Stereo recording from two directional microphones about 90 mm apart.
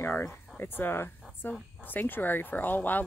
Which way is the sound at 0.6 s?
25° left (ahead or behind).